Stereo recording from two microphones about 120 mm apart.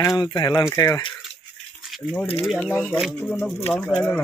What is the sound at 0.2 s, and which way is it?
Speech, 40° left (ahead or behind).